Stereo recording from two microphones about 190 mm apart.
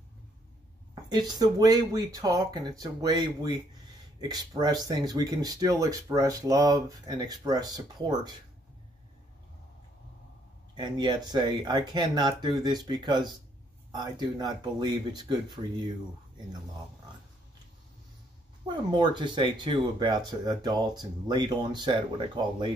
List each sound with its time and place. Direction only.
1.1 s speech: 20° right (ahead or behind)
10.7 s speech: 25° right (ahead or behind)
18.9 s speech: 25° right (ahead or behind)